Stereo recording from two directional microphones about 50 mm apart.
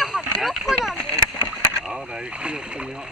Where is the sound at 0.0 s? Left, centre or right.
Centre.